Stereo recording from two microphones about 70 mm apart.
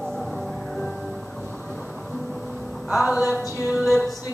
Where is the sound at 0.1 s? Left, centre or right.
Centre.